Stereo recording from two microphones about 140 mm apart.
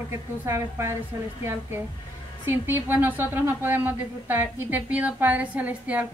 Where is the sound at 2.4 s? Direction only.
15° right (ahead or behind).